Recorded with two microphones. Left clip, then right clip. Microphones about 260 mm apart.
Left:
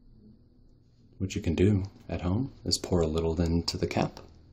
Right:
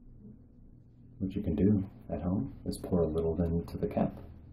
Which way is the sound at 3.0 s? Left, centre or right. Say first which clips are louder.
Right 1 dB; left.